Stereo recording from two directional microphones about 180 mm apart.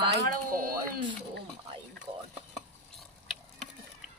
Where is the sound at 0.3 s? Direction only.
55° right (ahead or behind).